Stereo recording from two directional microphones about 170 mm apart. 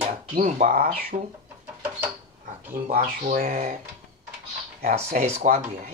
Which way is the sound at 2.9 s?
60° right (ahead or behind).